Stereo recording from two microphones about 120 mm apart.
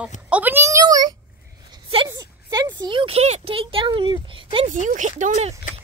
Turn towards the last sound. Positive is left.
turn(degrees=-80)